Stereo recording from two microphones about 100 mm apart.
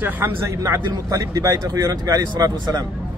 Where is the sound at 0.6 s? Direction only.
35° right (ahead or behind).